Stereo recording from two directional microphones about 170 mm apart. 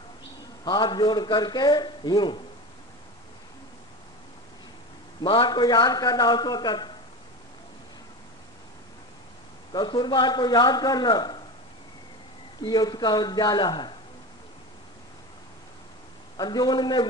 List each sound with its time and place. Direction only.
0.7 s a man's voice: 25° left (ahead or behind)
5.2 s a man's voice: 30° left (ahead or behind)
9.7 s a man's voice: 25° left (ahead or behind)
12.6 s a man's voice: 25° left (ahead or behind)
16.3 s a man's voice: 25° left (ahead or behind)